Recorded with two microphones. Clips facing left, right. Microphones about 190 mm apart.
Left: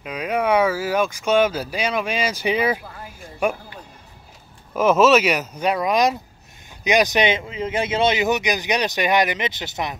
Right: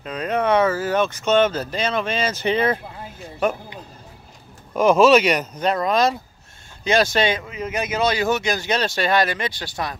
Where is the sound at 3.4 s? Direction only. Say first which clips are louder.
Even; 10° left (ahead or behind).